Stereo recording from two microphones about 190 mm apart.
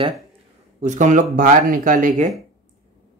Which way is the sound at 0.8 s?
40° right (ahead or behind).